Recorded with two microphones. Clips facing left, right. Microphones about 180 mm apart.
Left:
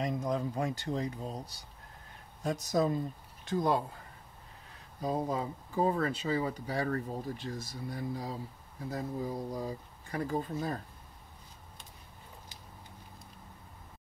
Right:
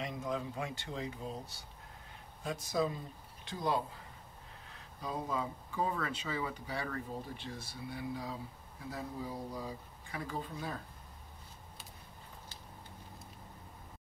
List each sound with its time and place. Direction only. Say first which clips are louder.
0.0 s speech: left 5 dB; 40° left (ahead or behind)
5.0 s speech: left 5 dB; 40° left (ahead or behind)